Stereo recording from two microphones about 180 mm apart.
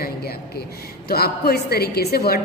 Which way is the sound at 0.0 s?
60° left (ahead or behind).